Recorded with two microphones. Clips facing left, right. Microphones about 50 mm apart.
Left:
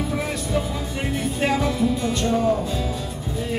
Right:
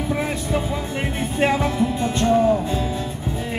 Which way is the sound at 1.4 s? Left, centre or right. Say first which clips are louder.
Right 2 dB; right.